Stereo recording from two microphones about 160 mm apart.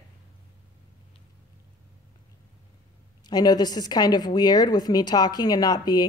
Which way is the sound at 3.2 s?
25° left (ahead or behind).